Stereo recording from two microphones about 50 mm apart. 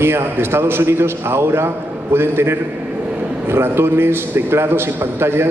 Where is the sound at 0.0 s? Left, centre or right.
Right.